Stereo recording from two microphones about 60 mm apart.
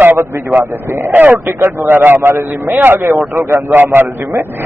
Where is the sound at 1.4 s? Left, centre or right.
Right.